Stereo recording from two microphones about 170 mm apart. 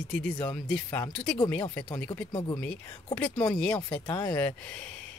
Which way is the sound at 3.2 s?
10° left (ahead or behind).